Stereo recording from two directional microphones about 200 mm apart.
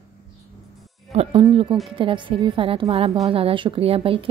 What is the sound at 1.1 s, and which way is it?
A woman's voice, 30° right (ahead or behind).